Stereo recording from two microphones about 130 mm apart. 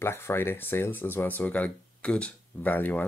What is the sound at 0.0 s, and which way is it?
Speech, 20° left (ahead or behind).